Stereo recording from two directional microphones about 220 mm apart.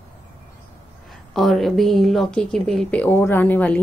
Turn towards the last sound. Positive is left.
turn(degrees=10)  # may be behind; listen again after turning